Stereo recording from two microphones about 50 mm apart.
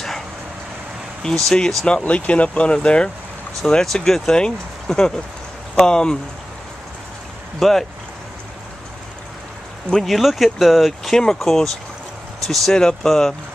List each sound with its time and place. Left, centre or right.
1.2 s speech: centre
1.9 s speech: left
7.6 s speech: centre
10.0 s speech: centre